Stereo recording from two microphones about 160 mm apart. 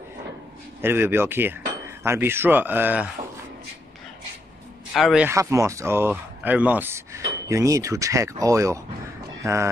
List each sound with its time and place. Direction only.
0.7 s speech: 15° right (ahead or behind)
4.9 s speech: 5° right (ahead or behind)
5.3 s speech: 20° right (ahead or behind)